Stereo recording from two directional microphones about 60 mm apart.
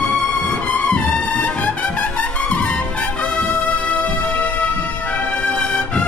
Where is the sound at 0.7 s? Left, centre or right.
Left.